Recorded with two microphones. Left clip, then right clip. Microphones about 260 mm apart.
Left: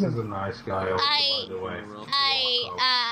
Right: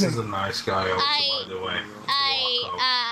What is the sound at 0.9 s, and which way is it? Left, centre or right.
Speech, centre.